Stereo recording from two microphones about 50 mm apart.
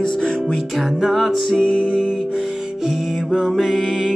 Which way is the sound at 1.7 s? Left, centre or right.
Left.